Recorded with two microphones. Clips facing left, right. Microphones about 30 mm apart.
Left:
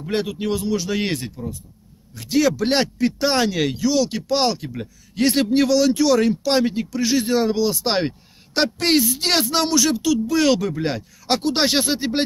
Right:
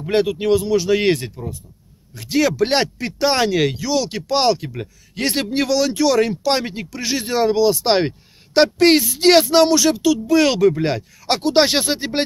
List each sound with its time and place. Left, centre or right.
0.0 s speech: right
5.7 s speech: right